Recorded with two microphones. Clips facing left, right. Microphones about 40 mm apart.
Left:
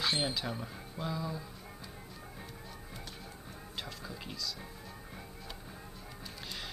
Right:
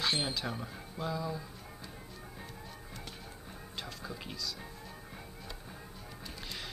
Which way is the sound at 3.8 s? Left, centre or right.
Centre.